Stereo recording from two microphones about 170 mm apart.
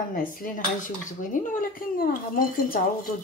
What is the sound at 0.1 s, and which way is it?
Dishes, 55° left (ahead or behind).